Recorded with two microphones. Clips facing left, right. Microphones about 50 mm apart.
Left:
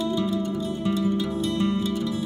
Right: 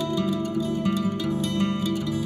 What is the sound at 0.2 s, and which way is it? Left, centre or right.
Music, right.